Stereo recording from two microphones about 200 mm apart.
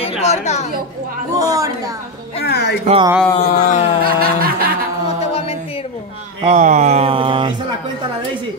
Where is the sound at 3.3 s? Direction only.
40° left (ahead or behind).